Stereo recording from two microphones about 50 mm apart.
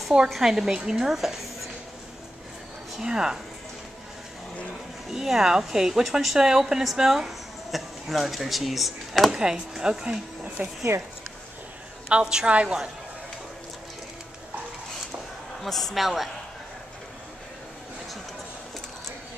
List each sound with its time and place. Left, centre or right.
0.3 s a woman's voice: centre
3.0 s a woman's voice: centre
5.1 s a woman's voice: centre
9.3 s a woman's voice: centre
10.6 s speech: right
12.1 s a woman's voice: centre
15.6 s a woman's voice: centre